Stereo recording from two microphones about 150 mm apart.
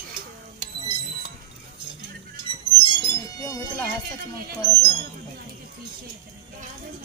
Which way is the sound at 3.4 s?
20° left (ahead or behind).